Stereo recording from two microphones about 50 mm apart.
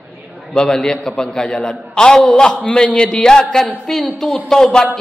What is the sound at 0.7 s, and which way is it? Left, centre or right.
A man's voice, centre.